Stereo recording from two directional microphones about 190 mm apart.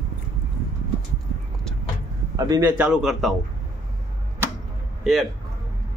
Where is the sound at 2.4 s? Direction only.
20° right (ahead or behind).